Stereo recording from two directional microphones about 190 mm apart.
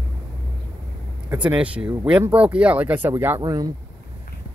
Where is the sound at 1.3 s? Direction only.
10° right (ahead or behind).